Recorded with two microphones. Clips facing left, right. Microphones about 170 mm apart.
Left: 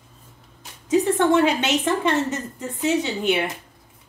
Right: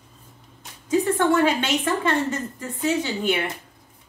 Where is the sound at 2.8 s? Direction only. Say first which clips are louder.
Left 2 dB; 20° left (ahead or behind).